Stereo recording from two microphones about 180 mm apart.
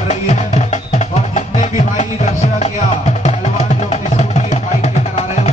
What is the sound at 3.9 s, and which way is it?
Music, 40° left (ahead or behind).